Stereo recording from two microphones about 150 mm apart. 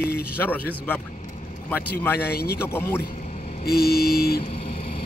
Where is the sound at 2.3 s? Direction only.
90° left.